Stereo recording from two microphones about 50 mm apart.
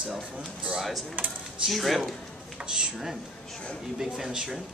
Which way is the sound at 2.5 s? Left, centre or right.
Centre.